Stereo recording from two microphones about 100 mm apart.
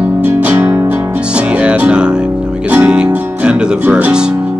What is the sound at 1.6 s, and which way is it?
Music, 10° right (ahead or behind).